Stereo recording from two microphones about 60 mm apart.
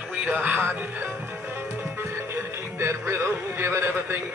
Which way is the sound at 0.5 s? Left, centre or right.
Right.